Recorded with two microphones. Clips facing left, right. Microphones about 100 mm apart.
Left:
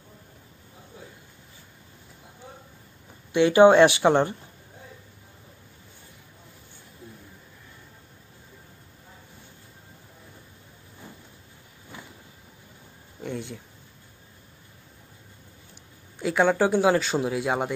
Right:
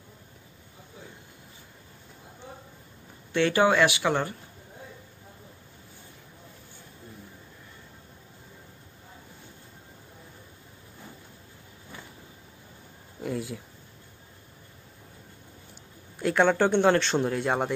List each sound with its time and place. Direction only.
3.3 s speech: 20° left (ahead or behind)
13.2 s a sound: 5° right (ahead or behind)
16.2 s speech: centre (ahead or behind)